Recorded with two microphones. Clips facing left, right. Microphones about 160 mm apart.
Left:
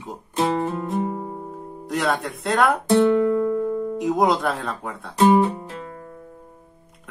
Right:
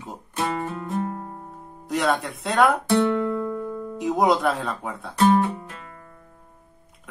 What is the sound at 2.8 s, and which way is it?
Music, 20° left (ahead or behind).